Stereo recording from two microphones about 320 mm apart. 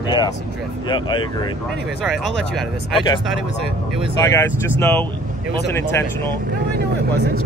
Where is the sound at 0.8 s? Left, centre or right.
Centre.